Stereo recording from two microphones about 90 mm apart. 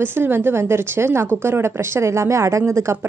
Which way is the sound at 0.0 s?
25° right (ahead or behind).